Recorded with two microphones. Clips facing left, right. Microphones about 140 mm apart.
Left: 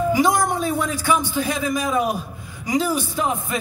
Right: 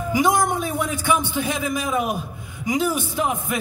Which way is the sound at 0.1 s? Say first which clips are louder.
Right 4 dB; 20° right (ahead or behind).